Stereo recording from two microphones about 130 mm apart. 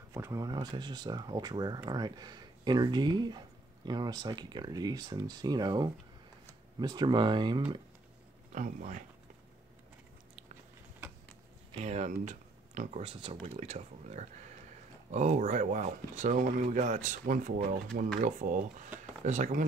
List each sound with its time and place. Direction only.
0.1 s speech: 20° right (ahead or behind)
8.5 s speech: 75° right (ahead or behind)
11.7 s speech: 60° right (ahead or behind); by 18.9 s 80° right
19.2 s speech: 65° right (ahead or behind)